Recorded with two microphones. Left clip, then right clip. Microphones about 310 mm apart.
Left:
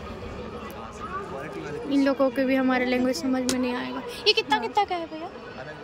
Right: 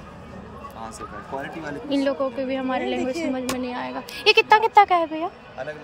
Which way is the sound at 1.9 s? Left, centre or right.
Centre.